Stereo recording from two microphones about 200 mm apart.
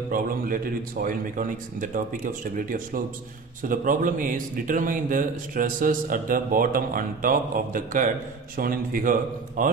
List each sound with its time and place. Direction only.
1.0 s a man's voice: 40° right (ahead or behind)